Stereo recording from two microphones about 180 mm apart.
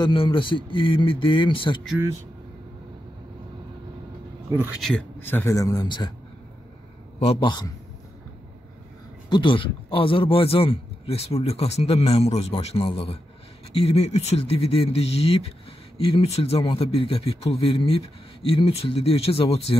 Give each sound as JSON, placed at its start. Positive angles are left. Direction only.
{"t": 0.0, "sound": "a man's voice", "side_deg": 30}
{"t": 4.5, "sound": "speech", "side_deg": -10}
{"t": 7.2, "sound": "a man's voice", "side_deg": 30}
{"t": 9.3, "sound": "a man's voice", "side_deg": 25}